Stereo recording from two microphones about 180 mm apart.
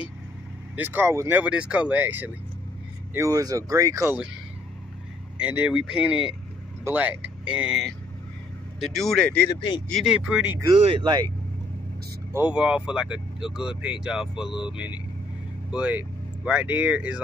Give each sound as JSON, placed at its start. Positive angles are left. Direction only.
{"t": 0.7, "sound": "speech", "side_deg": -10}
{"t": 5.4, "sound": "speech", "side_deg": -10}
{"t": 9.5, "sound": "speech", "side_deg": 25}
{"t": 9.8, "sound": "speech", "side_deg": 0}
{"t": 10.7, "sound": "speech", "side_deg": -30}
{"t": 12.3, "sound": "speech", "side_deg": -10}